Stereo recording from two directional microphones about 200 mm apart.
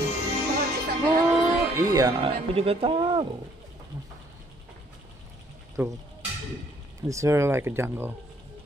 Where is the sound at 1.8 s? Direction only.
15° right (ahead or behind).